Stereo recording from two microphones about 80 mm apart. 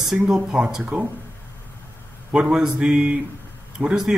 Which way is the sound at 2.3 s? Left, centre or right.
Centre.